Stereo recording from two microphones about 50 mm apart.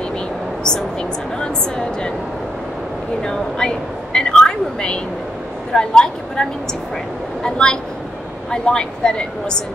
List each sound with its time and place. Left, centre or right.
1.4 s a woman's voice: centre
3.3 s a woman's voice: centre
7.4 s a woman's voice: centre